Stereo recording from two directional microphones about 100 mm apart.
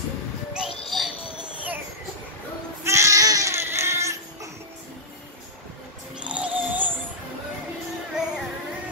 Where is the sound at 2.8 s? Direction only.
30° right (ahead or behind).